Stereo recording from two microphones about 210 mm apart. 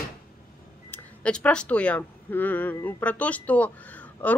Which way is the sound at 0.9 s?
5° left (ahead or behind).